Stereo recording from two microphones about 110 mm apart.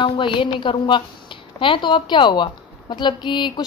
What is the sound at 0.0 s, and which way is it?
A woman's voice, 50° left (ahead or behind).